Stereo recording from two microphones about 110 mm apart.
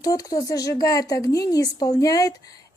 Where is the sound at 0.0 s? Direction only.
35° left (ahead or behind).